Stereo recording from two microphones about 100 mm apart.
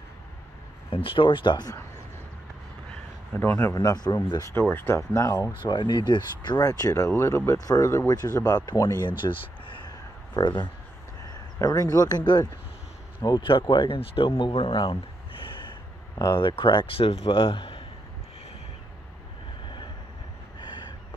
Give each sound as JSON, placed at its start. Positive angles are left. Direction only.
{"t": 0.8, "sound": "speech", "side_deg": 65}
{"t": 3.3, "sound": "speech", "side_deg": 20}
{"t": 3.7, "sound": "speech", "side_deg": 40}
{"t": 4.6, "sound": "speech", "side_deg": 20}
{"t": 5.6, "sound": "speech", "side_deg": 50}
{"t": 9.2, "sound": "a sound", "side_deg": 55}
{"t": 11.6, "sound": "speech", "side_deg": 40}
{"t": 13.2, "sound": "speech", "side_deg": 50}